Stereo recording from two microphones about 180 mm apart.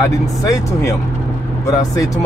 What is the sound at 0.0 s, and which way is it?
Speech, 20° left (ahead or behind).